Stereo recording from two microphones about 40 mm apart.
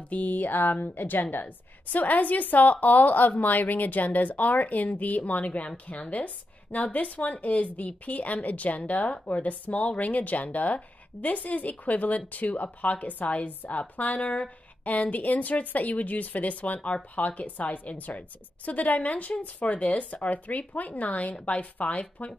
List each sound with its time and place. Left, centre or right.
0.1 s a woman's voice: left